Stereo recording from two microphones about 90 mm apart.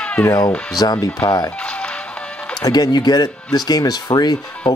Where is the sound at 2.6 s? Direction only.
50° left (ahead or behind).